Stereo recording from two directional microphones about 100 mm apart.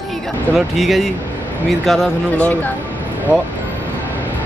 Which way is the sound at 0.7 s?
Centre (ahead or behind).